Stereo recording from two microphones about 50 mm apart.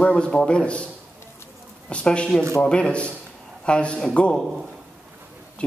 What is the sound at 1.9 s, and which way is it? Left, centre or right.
A man's voice, left.